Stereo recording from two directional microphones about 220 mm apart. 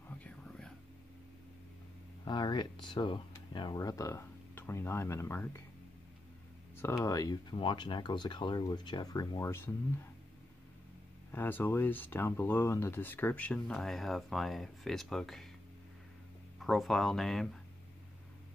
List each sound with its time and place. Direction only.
0.2 s whispering: 5° left (ahead or behind)
2.2 s speech: 20° left (ahead or behind)
7.1 s speech: 15° left (ahead or behind)
11.3 s speech: 10° left (ahead or behind)
16.5 s speech: centre (ahead or behind)